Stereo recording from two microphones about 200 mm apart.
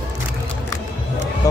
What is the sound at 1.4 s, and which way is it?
Speech, 15° left (ahead or behind).